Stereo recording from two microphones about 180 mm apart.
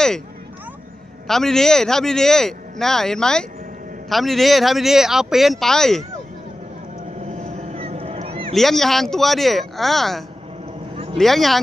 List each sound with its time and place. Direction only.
1.2 s speech: centre (ahead or behind)
7.3 s vehicle: 40° right (ahead or behind)
8.5 s speech: centre (ahead or behind)